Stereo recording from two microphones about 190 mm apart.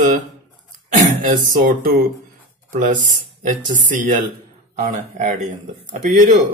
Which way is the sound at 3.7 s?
45° right (ahead or behind).